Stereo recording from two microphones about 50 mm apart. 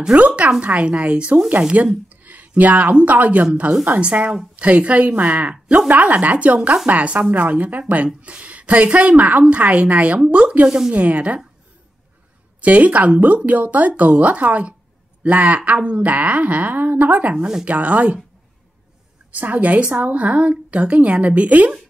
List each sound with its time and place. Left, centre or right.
0.1 s a woman's voice: right
4.0 s a woman's voice: right
12.5 s a woman's voice: right
19.3 s a woman's voice: right